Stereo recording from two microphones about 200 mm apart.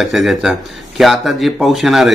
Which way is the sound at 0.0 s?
Centre (ahead or behind).